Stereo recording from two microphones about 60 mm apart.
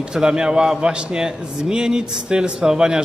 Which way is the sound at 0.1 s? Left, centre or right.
Centre.